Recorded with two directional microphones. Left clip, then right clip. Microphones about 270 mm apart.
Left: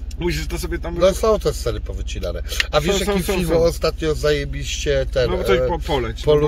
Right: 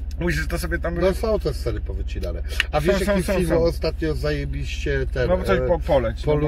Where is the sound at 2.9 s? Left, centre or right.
Centre.